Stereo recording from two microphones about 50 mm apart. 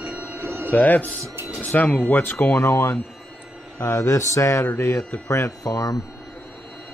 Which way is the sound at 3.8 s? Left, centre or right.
Left.